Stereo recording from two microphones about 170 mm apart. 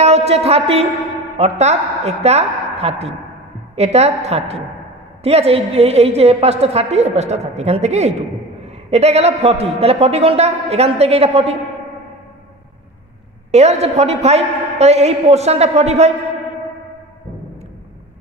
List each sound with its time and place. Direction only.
0.0 s a sound: 40° right (ahead or behind)
1.4 s a woman's voice: 40° right (ahead or behind)
13.5 s a woman's voice: 40° right (ahead or behind)